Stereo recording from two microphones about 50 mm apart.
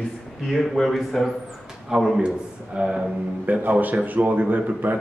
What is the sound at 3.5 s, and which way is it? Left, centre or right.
A man's voice, right.